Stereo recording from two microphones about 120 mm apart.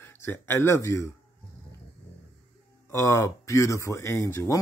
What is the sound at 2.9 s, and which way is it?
Speech, 25° left (ahead or behind).